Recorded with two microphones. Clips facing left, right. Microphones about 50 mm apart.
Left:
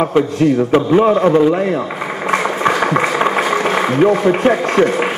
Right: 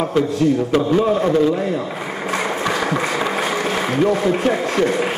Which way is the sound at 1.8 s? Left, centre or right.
Left.